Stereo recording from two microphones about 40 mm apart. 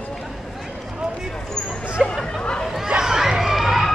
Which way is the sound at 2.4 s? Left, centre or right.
Left.